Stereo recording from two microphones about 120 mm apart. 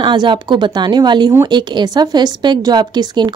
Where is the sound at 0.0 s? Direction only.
40° right (ahead or behind).